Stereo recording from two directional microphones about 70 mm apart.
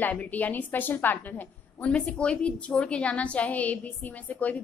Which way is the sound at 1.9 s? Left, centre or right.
Centre.